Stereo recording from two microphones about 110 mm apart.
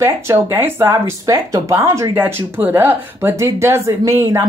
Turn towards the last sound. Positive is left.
turn(degrees=-25)  # may be behind; listen again after turning